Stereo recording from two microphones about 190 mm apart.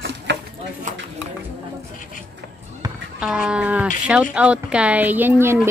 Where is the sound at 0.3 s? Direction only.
70° right (ahead or behind).